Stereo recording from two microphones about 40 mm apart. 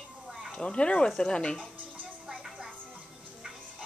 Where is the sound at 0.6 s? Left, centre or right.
Left.